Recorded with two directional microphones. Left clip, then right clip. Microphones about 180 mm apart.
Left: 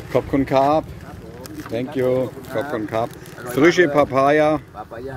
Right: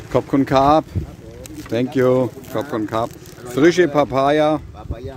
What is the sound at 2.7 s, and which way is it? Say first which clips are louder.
Speech: right 3 dB; 35° right (ahead or behind).